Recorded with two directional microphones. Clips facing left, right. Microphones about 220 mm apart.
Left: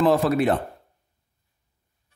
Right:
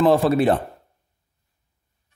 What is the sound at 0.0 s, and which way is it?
Speech, 30° right (ahead or behind).